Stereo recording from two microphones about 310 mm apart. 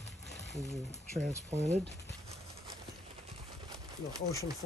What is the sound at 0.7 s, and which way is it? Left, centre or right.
Speech, centre.